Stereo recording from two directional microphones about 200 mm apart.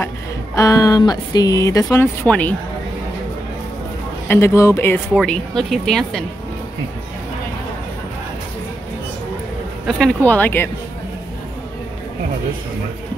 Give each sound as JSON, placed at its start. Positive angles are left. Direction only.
{"t": 0.6, "sound": "speech", "side_deg": 15}
{"t": 4.3, "sound": "speech", "side_deg": 15}
{"t": 9.8, "sound": "speech", "side_deg": 0}